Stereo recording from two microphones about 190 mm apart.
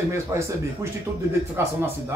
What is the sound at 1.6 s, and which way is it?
Speech, 10° right (ahead or behind).